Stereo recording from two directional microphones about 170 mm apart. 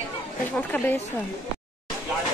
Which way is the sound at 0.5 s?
10° left (ahead or behind).